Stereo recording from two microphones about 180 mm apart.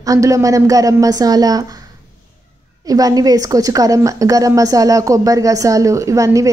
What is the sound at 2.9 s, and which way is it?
A woman's voice, 20° right (ahead or behind).